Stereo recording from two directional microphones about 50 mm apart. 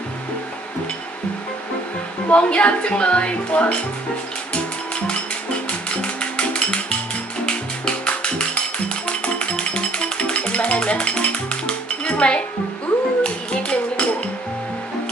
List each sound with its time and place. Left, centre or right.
2.2 s a woman's voice: left
5.7 s music: left
13.2 s a sound: centre